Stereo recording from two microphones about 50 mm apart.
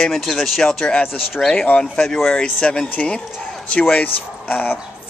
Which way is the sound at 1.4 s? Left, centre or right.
Centre.